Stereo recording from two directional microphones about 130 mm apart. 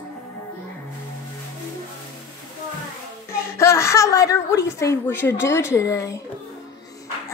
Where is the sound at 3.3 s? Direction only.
20° left (ahead or behind).